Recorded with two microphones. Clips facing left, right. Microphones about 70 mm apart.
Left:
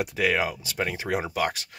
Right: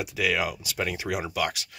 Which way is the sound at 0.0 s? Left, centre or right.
Left.